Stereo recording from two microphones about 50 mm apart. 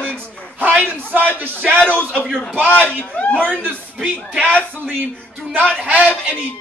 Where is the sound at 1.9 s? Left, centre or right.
Right.